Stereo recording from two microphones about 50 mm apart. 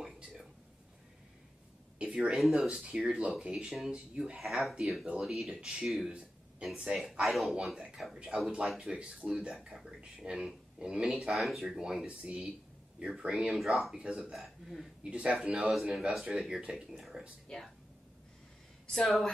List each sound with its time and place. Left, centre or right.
0.0 s whispering: centre
2.0 s a sound: right
2.3 s speech: centre; by 3.3 s right
3.3 s speech: centre
9.8 s speech: centre
13.5 s speech: centre
15.0 s speech: right
15.5 s speech: centre
17.5 s speech: centre
18.9 s speech: centre